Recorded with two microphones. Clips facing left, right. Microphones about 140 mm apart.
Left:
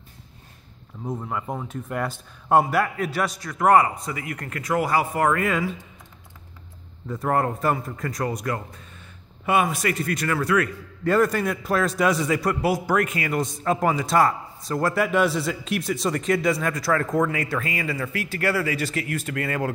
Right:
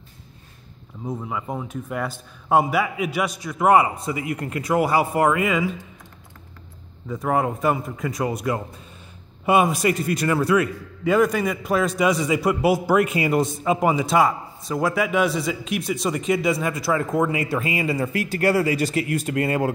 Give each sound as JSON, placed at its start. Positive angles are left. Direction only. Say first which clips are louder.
{"t": 1.2, "sound": "speech", "louder": "right 1 dB", "side_deg": -5}
{"t": 3.1, "sound": "a man's voice", "louder": "right 1 dB", "side_deg": -15}
{"t": 7.1, "sound": "speech", "louder": "right 1 dB", "side_deg": 0}
{"t": 9.5, "sound": "a man's voice", "louder": "right 4 dB", "side_deg": -15}
{"t": 11.1, "sound": "a man's voice", "louder": "right 1 dB", "side_deg": 0}
{"t": 18.3, "sound": "speech", "louder": "right 4 dB", "side_deg": -40}
{"t": 18.9, "sound": "speech", "louder": "right 5 dB", "side_deg": -20}